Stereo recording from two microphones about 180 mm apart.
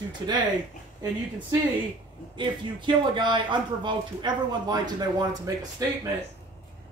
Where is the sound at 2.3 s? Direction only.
25° right (ahead or behind).